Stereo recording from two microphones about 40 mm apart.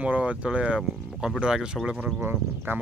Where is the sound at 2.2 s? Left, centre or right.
Right.